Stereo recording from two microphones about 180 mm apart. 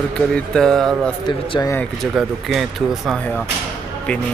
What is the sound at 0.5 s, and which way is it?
Speech, 5° left (ahead or behind).